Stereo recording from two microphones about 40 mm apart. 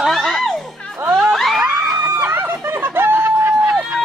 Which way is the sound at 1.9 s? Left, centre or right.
Right.